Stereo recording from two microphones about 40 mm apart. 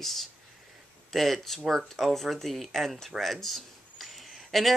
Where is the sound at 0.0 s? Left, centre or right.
Centre.